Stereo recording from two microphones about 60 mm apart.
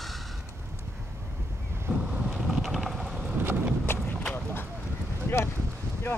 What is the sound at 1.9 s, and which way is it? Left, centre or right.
Boat, centre.